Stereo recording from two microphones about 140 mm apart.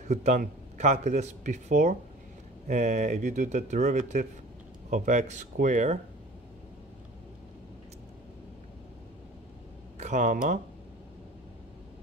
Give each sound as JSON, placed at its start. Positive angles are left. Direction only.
{"t": 0.1, "sound": "a man's voice", "side_deg": -55}
{"t": 9.9, "sound": "speech", "side_deg": -60}